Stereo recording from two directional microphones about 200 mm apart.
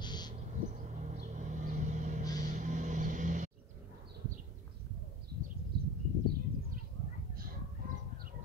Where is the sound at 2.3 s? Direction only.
40° right (ahead or behind).